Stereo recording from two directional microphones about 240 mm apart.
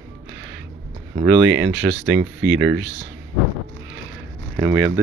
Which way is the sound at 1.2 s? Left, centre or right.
Centre.